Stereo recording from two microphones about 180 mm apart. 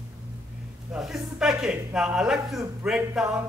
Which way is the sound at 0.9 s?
Centre (ahead or behind).